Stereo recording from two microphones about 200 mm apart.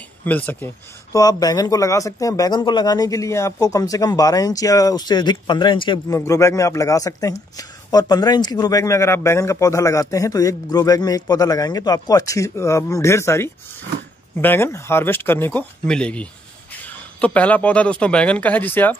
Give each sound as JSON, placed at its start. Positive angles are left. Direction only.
{"t": 0.2, "sound": "speech", "side_deg": 10}
{"t": 1.1, "sound": "speech", "side_deg": 20}